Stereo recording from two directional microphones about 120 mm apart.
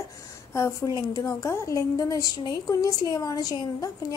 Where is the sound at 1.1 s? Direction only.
25° left (ahead or behind).